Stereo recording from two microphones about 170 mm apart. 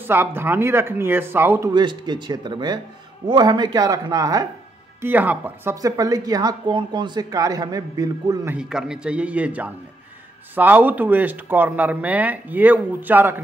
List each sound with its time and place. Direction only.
0.0 s speech: 15° right (ahead or behind)
1.7 s a woman's voice: 25° right (ahead or behind)
5.0 s a woman's voice: 10° right (ahead or behind)
8.5 s a man's voice: 5° right (ahead or behind)